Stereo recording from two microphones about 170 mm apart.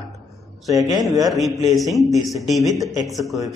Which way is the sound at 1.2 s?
Centre (ahead or behind).